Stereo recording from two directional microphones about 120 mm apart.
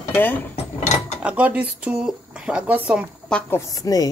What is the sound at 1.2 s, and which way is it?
Speech, 10° right (ahead or behind).